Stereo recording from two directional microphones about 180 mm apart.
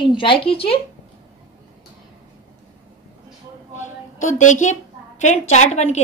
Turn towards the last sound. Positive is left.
turn(degrees=40)  # may be behind; listen again after turning